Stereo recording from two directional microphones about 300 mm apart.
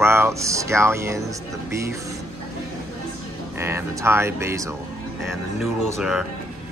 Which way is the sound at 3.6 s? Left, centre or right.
Centre.